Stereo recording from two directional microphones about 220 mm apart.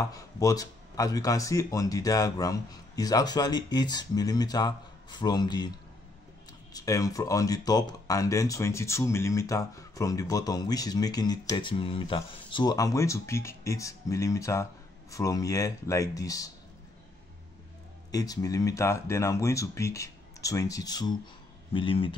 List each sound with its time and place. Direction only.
0.0 s speech: 15° left (ahead or behind)
6.7 s speech: 15° left (ahead or behind)
18.1 s speech: 15° left (ahead or behind)